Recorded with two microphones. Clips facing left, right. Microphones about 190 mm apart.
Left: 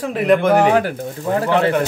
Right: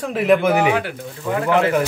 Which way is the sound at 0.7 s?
40° left (ahead or behind).